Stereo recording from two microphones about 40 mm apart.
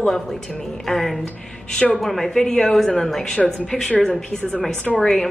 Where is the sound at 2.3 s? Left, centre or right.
Centre.